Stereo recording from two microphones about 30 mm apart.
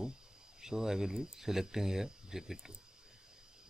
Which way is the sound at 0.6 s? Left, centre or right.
Centre.